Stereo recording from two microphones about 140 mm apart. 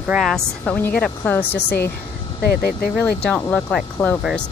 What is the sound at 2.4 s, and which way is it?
Speech, 90° left.